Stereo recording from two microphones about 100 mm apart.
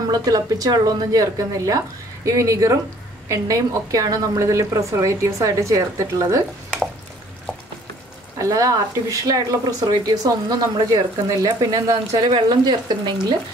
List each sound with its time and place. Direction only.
0.1 s a woman's voice: 40° right (ahead or behind)
8.4 s a woman's voice: 35° right (ahead or behind)
12.3 s speech: 45° right (ahead or behind)